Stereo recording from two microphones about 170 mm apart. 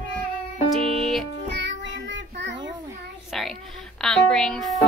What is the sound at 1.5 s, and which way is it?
Child singing, 90° right.